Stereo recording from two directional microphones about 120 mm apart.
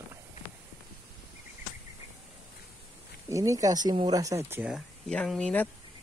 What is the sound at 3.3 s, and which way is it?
Speech, 25° right (ahead or behind).